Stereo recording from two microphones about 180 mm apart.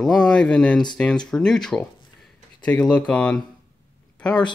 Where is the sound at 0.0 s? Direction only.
5° left (ahead or behind).